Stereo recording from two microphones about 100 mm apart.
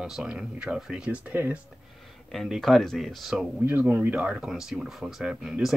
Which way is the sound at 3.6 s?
20° right (ahead or behind).